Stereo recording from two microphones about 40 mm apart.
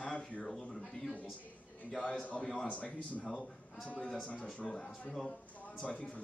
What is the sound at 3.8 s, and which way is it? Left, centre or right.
Speech, left.